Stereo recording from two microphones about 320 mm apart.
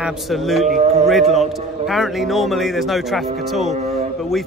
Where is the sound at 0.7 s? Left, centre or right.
Centre.